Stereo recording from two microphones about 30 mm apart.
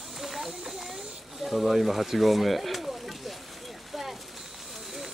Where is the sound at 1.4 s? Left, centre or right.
Centre.